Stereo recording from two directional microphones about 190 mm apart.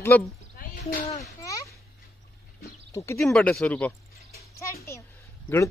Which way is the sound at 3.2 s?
5° left (ahead or behind).